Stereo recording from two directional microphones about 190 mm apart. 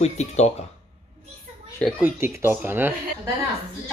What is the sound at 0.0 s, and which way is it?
Speech, 35° left (ahead or behind).